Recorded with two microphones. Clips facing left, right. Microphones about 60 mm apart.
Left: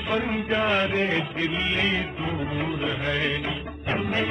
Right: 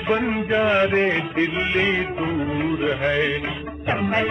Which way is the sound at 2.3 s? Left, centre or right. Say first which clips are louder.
Right 5 dB; centre.